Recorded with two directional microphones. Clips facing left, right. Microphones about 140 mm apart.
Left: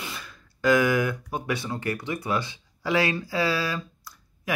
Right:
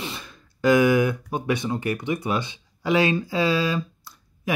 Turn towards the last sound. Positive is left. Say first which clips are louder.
# right 8 dB
turn(degrees=-20)  # may be behind; listen again after turning